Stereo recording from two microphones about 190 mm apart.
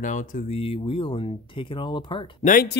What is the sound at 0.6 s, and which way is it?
Speech, 30° left (ahead or behind).